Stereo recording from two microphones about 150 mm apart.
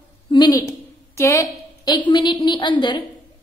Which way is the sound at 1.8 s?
30° left (ahead or behind).